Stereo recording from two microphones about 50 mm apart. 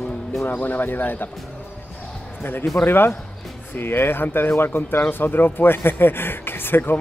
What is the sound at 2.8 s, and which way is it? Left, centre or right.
Speech, left.